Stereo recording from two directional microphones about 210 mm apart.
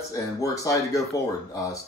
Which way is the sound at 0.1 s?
15° left (ahead or behind).